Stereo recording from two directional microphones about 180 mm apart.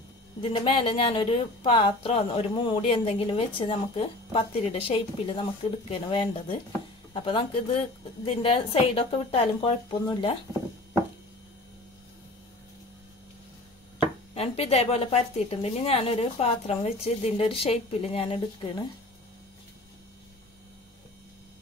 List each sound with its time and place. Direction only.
0.4 s a woman's voice: 30° left (ahead or behind)
14.3 s a woman's voice: 35° left (ahead or behind)